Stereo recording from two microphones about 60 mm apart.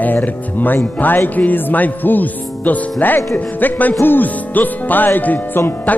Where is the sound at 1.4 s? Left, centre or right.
Left.